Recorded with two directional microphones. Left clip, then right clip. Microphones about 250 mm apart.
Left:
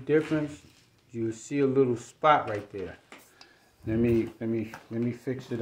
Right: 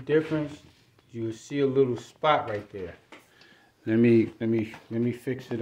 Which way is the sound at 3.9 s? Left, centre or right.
Right.